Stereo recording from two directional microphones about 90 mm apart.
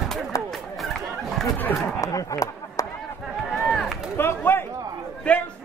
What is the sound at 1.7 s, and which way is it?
Speech, 20° left (ahead or behind).